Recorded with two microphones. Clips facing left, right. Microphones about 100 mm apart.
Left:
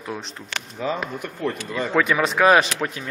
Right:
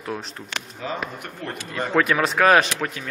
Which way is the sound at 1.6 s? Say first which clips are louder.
Right 2 dB; centre (ahead or behind).